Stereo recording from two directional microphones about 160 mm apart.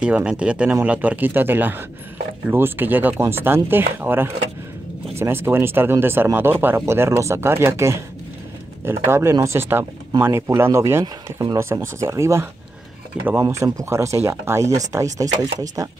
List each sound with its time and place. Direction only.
0.0 s speech: 5° right (ahead or behind)